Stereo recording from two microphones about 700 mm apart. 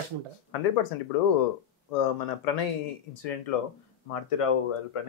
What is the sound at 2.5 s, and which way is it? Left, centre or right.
Speech, left.